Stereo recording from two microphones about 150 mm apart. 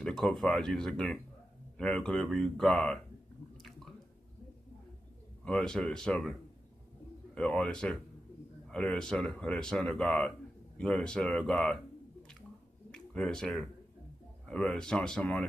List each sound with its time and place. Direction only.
0.0 s speech: 5° left (ahead or behind)
5.4 s speech: 5° left (ahead or behind)
7.3 s speech: 5° left (ahead or behind)